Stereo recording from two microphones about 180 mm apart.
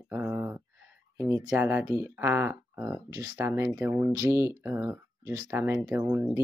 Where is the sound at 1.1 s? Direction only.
15° right (ahead or behind).